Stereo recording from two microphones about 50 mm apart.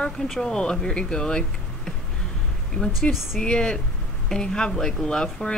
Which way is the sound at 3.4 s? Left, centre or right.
Centre.